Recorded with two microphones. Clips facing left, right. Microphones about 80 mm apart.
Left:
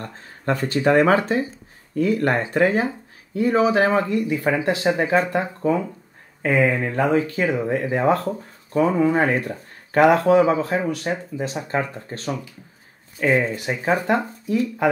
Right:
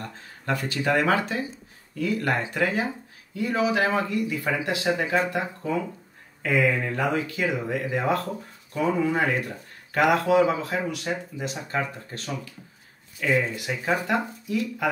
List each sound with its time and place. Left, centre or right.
0.0 s speech: left